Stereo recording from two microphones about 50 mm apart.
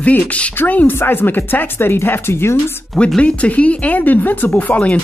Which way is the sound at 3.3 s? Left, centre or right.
Left.